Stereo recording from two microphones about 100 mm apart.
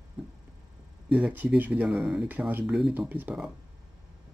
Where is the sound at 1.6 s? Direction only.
20° right (ahead or behind).